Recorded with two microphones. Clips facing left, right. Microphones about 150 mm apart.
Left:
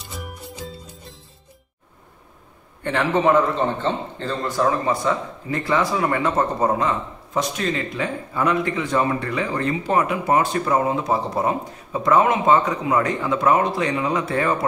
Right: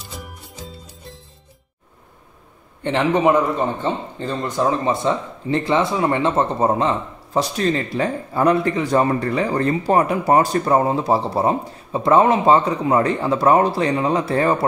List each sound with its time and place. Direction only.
2.8 s a man's voice: 20° right (ahead or behind)